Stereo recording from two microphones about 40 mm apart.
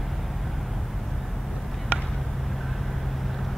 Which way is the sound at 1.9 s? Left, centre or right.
Right.